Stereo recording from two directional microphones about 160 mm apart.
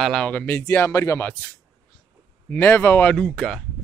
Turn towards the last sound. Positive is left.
turn(degrees=10)  # may be behind; listen again after turning